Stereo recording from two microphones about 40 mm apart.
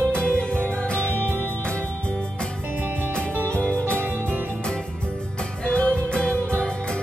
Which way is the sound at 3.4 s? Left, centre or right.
Left.